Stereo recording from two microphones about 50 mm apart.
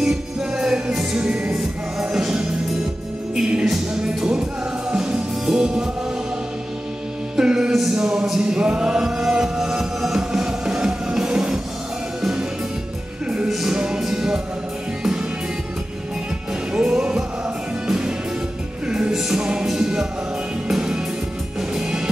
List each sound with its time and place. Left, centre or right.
0.0 s music: centre
3.6 s music: centre
7.3 s music: centre
13.5 s music: centre
16.7 s music: centre